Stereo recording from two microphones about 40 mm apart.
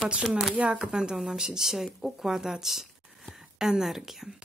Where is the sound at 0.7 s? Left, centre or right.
Right.